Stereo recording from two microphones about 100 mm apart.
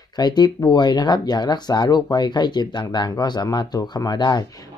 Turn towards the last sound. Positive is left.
turn(degrees=45)  # may be behind; listen again after turning